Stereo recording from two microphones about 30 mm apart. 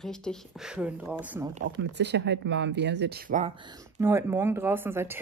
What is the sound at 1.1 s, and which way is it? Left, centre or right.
Speech, right.